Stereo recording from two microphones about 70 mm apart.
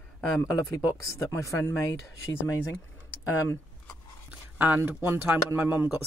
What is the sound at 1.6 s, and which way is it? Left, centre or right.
Speech, left.